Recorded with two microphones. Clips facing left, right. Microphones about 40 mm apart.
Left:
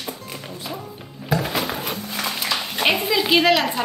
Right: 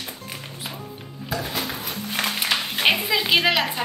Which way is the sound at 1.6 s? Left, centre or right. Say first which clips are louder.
Left 4 dB; left.